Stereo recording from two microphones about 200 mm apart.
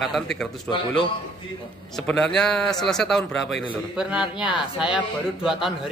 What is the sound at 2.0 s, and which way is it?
A man's voice, 5° left (ahead or behind).